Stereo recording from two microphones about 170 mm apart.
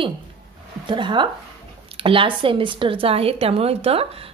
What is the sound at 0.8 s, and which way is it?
A woman's voice, 30° right (ahead or behind).